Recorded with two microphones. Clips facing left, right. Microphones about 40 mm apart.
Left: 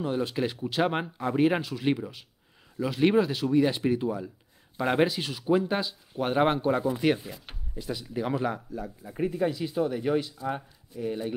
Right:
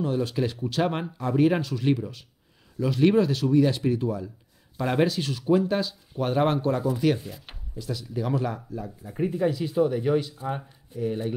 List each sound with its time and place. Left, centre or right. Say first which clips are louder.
0.0 s speech: right 2 dB; centre
7.2 s speech: right 1 dB; centre
7.7 s speech: right 1 dB; left
8.5 s speech: right 1 dB; centre